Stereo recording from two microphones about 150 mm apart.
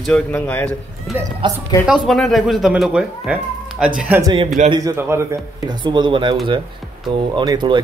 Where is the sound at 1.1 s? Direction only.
Centre (ahead or behind).